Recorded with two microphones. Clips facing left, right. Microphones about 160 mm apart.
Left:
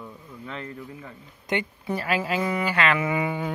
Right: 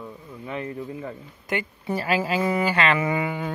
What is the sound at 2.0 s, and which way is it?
Speech, 30° right (ahead or behind).